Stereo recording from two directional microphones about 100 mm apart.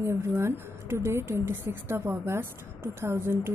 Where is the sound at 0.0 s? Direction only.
25° right (ahead or behind).